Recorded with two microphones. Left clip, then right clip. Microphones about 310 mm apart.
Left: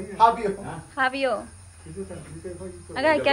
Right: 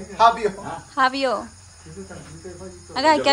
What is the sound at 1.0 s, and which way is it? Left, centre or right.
Speech, centre.